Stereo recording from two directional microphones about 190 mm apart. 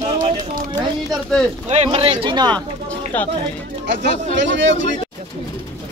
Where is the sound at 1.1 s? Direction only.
5° left (ahead or behind).